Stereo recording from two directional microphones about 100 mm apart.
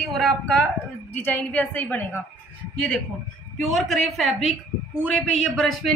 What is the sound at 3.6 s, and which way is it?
A man's voice, centre (ahead or behind).